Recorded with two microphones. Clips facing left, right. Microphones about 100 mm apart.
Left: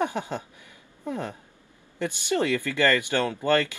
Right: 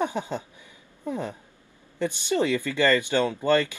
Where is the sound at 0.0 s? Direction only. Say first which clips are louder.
Even; 15° right (ahead or behind).